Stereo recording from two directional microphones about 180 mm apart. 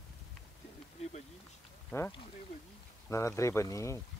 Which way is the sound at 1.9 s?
10° left (ahead or behind).